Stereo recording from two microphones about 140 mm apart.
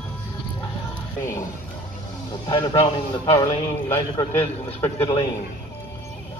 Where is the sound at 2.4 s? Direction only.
30° left (ahead or behind).